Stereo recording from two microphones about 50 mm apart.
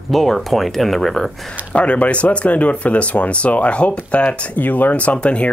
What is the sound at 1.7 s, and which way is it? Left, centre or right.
Speech, left.